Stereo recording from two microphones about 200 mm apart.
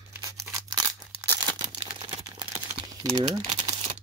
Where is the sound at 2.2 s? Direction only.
20° right (ahead or behind).